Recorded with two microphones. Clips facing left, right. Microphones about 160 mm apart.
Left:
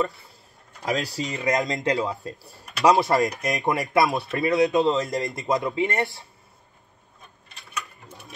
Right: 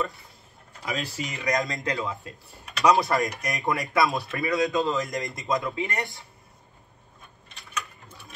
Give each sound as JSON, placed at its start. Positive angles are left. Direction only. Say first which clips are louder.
{"t": 0.8, "sound": "speech", "louder": "left 5 dB", "side_deg": 40}
{"t": 2.0, "sound": "speech", "louder": "left 5 dB", "side_deg": 35}
{"t": 5.0, "sound": "speech", "louder": "left 4 dB", "side_deg": -20}
{"t": 5.5, "sound": "speech", "louder": "left 4 dB", "side_deg": 20}